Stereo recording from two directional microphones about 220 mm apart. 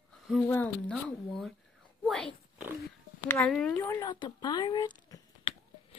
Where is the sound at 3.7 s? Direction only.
15° left (ahead or behind).